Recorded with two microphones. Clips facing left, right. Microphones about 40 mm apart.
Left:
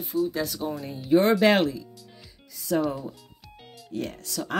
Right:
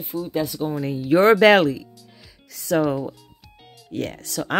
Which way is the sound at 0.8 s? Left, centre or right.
Right.